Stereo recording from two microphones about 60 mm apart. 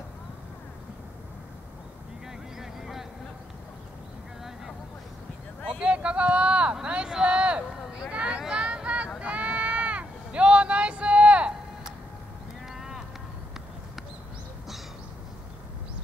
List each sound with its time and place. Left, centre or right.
2.6 s vehicle: centre
5.7 s a sound: centre
12.7 s run: centre